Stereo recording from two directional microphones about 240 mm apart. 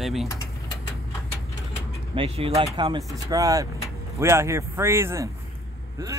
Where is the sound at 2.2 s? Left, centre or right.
Right.